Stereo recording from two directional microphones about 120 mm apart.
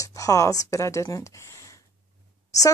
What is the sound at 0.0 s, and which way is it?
A woman's voice, 30° left (ahead or behind).